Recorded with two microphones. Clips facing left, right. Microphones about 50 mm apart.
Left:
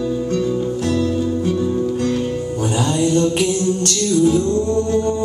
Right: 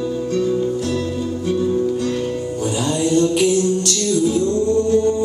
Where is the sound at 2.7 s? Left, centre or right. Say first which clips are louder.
Left 1 dB; left.